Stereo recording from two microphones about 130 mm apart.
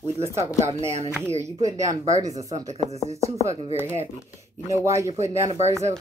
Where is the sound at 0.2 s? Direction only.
20° right (ahead or behind).